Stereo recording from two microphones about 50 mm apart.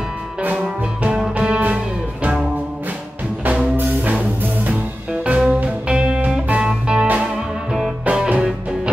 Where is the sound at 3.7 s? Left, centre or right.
Right.